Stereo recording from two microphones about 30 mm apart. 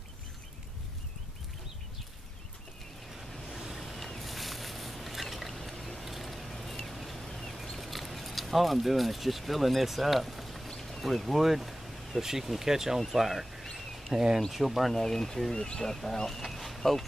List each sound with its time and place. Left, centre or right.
3.7 s a sound: centre
5.8 s vehicle: left
6.0 s vehicle: centre
7.0 s a sound: centre
7.7 s speech: centre
10.8 s a sound: centre
11.2 s vehicle: centre
12.2 s speech: centre
14.1 s speech: right
14.5 s speech: centre
15.5 s speech: left
16.3 s a sound: centre